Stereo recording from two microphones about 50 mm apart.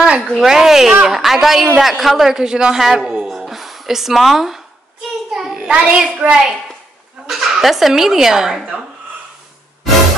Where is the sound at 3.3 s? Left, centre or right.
Centre.